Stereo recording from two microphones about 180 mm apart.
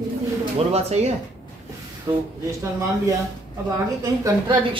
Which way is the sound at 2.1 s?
15° right (ahead or behind).